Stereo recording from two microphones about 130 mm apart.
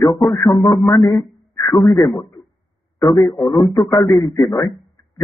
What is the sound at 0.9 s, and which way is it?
Speech, 30° left (ahead or behind).